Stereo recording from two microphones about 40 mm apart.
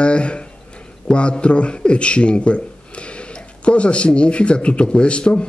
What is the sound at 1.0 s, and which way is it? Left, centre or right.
A man's voice, left.